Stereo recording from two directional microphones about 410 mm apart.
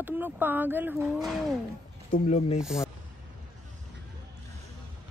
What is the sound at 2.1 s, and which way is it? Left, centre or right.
Speech, centre.